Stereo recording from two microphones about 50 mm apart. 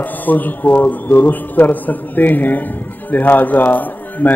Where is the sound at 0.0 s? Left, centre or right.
Left.